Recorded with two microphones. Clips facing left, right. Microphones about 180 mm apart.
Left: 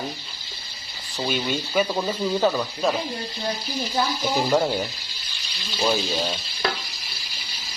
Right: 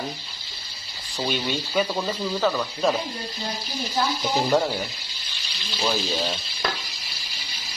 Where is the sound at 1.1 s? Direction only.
5° left (ahead or behind).